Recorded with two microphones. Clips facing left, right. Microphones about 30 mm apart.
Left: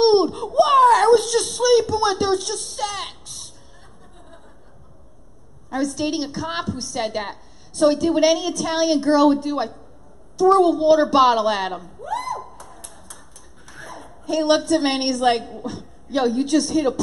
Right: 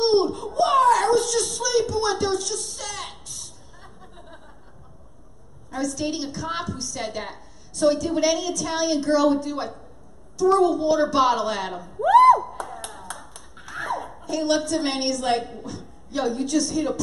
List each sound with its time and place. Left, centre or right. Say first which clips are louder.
0.0 s a sound: left 4 dB; left
5.7 s a woman's voice: left 4 dB; centre
12.0 s a sound: right 15 dB; right
12.8 s clapping: right 7 dB; right
14.3 s a woman's voice: left 5 dB; centre
15.3 s a woman's voice: right 1 dB; centre
15.6 s a woman's voice: left 5 dB; centre